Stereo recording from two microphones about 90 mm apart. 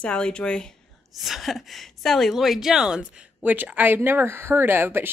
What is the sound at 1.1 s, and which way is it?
Speech, centre (ahead or behind).